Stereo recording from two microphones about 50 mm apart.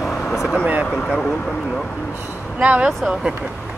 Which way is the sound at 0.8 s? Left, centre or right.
Centre.